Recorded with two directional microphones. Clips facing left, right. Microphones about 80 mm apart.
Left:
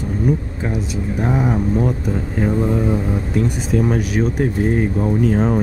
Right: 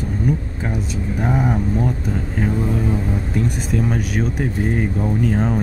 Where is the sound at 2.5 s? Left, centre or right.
Left.